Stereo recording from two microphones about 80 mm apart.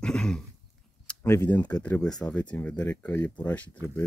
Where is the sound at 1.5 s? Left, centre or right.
Centre.